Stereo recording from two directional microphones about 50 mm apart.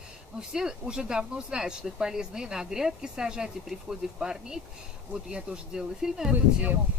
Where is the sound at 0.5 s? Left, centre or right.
Centre.